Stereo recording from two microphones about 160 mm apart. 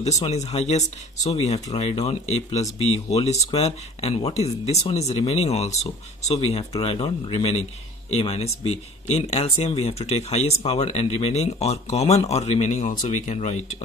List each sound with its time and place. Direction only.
0.2 s speech: 45° left (ahead or behind)